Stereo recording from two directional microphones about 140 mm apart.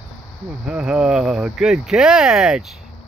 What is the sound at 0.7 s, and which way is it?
Speech, 5° right (ahead or behind).